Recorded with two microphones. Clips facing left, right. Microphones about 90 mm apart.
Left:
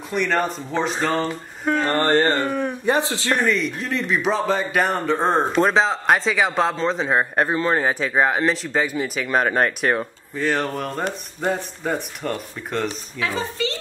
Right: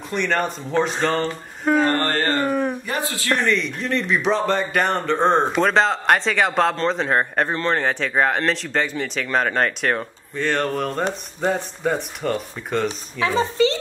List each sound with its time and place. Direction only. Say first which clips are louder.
0.1 s speech: left 1 dB; centre (ahead or behind)
2.0 s a man's voice: left 3 dB; 20° left (ahead or behind)
3.3 s speech: even; centre (ahead or behind)
12.8 s speech: right 3 dB; 25° right (ahead or behind)